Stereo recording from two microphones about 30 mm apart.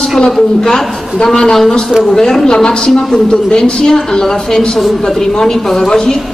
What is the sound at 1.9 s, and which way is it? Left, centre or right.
Speech, centre.